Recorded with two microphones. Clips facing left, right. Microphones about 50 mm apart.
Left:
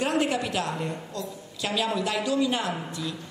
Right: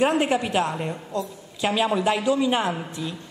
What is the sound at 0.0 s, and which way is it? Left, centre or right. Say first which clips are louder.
A woman's voice: right 4 dB; right.